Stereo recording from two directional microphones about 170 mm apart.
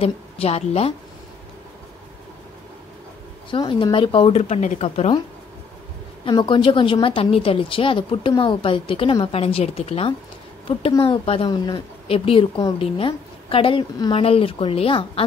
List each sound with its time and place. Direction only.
0.0 s a woman's voice: 35° left (ahead or behind)
3.4 s a woman's voice: 30° left (ahead or behind)
6.2 s a woman's voice: 30° left (ahead or behind)